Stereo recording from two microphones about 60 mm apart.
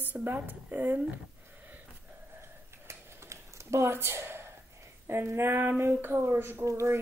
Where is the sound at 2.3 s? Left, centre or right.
Right.